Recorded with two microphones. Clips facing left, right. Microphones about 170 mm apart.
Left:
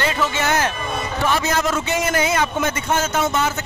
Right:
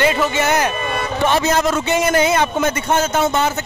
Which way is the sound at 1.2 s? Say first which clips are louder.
Right 4 dB; 30° right (ahead or behind).